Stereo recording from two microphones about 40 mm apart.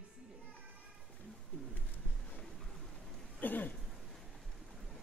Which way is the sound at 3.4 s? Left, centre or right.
Left.